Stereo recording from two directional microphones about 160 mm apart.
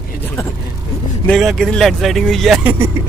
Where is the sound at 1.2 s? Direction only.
5° left (ahead or behind).